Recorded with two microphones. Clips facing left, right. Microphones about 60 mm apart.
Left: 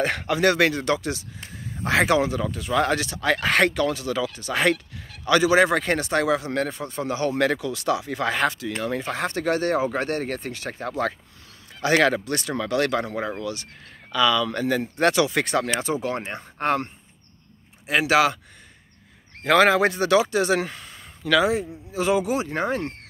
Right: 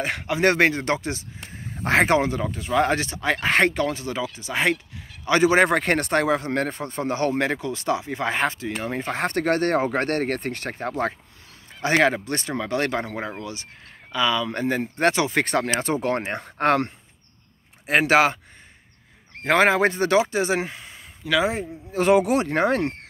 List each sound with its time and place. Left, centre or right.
0.0 s speech: centre
0.4 s speech: right
4.4 s speech: centre
5.3 s speech: right
7.3 s speech: right
17.8 s speech: right
19.4 s speech: right
21.5 s speech: right